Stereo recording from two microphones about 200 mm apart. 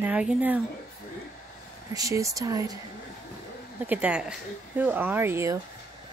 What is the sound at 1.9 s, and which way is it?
Speech, 15° right (ahead or behind).